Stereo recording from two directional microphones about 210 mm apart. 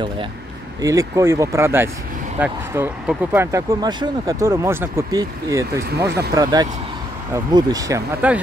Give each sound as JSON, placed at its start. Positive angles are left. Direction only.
{"t": 0.7, "sound": "speech", "side_deg": -15}